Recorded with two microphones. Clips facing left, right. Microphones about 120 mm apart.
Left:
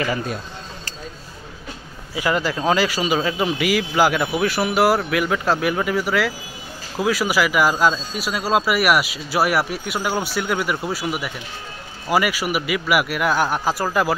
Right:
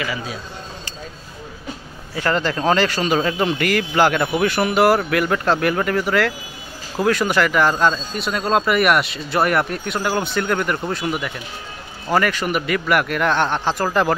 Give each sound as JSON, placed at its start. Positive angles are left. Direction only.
{"t": 0.0, "sound": "speech", "side_deg": 50}
{"t": 2.1, "sound": "a man's voice", "side_deg": 10}